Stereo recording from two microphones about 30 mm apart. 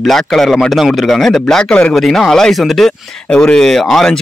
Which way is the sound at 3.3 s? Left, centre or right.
Left.